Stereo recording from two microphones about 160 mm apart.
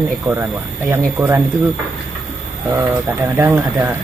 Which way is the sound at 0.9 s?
15° right (ahead or behind).